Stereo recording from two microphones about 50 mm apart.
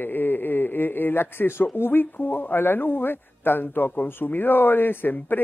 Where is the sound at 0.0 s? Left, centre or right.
Left.